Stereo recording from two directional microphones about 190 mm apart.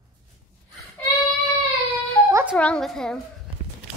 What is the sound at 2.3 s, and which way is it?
Music, 10° right (ahead or behind).